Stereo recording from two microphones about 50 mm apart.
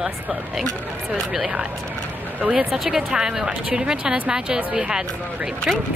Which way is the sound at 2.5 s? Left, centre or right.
Centre.